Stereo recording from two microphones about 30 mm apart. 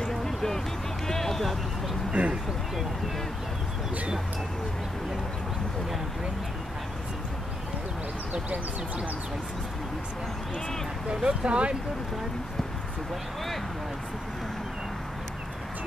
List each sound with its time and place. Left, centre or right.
0.0 s music: centre
2.2 s speech: right
11.2 s speech: right